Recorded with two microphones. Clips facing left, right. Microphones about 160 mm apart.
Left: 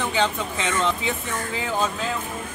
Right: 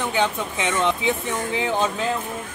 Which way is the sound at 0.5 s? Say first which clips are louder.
Right 2 dB; 20° right (ahead or behind).